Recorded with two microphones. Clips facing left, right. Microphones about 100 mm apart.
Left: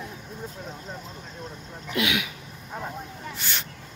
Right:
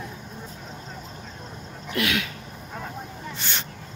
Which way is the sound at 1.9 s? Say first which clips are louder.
Even; 15° left (ahead or behind).